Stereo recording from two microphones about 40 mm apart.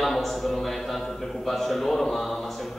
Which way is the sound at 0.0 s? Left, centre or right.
Centre.